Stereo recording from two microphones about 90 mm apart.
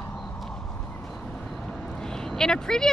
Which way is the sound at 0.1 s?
5° left (ahead or behind).